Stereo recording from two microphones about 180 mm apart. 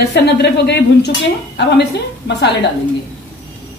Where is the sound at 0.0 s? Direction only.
65° left (ahead or behind).